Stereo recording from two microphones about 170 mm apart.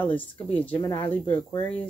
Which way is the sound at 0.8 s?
20° left (ahead or behind).